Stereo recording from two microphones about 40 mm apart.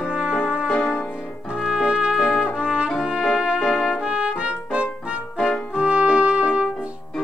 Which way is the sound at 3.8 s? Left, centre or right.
Right.